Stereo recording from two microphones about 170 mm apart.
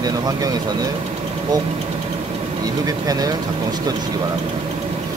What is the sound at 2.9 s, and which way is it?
Speech, 20° right (ahead or behind).